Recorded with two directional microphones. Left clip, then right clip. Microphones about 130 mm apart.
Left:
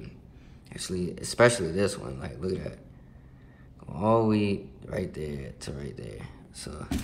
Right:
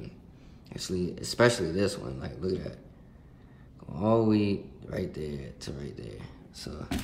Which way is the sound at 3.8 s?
10° right (ahead or behind).